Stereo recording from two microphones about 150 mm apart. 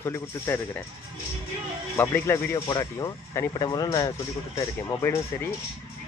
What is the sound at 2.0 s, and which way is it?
Speech, 15° left (ahead or behind).